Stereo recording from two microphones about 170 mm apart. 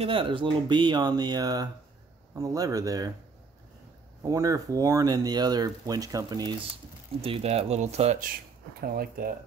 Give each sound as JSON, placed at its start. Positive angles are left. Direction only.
{"t": 0.0, "sound": "speech", "side_deg": -30}
{"t": 4.2, "sound": "speech", "side_deg": -20}
{"t": 7.2, "sound": "speech", "side_deg": -35}
{"t": 8.8, "sound": "speech", "side_deg": -60}